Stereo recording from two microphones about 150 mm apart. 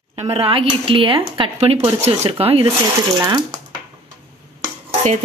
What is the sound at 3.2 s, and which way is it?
Speech, 25° right (ahead or behind).